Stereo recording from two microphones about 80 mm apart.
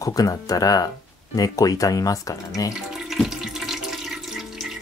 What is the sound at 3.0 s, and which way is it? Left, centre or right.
Water, centre.